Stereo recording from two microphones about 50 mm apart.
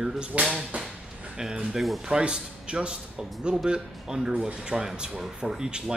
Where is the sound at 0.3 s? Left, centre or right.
Right.